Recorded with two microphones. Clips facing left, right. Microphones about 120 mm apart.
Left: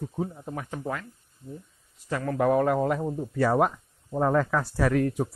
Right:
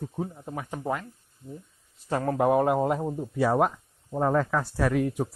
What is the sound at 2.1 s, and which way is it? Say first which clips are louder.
Speech: right 1 dB; 35° right (ahead or behind).